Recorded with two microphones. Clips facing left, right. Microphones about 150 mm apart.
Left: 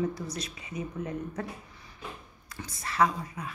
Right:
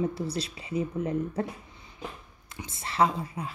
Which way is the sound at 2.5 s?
25° right (ahead or behind).